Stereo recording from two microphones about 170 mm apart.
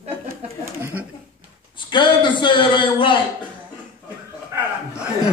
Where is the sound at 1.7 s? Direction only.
25° left (ahead or behind).